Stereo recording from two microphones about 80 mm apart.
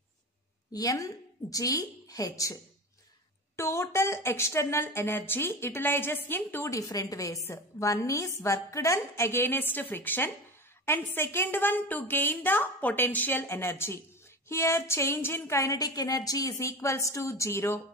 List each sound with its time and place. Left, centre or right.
0.7 s a woman's voice: left
3.5 s a woman's voice: left
6.7 s a woman's voice: left
15.8 s a woman's voice: left